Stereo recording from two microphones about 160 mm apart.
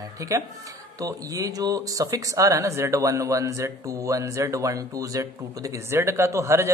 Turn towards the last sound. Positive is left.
turn(degrees=-15)  # may be behind; listen again after turning